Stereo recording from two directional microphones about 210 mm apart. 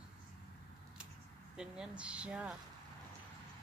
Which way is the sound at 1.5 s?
5° right (ahead or behind).